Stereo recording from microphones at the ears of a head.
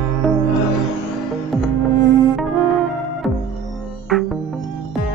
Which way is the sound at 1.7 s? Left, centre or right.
Right.